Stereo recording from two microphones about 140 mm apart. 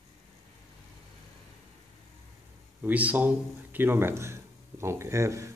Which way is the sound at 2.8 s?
10° right (ahead or behind).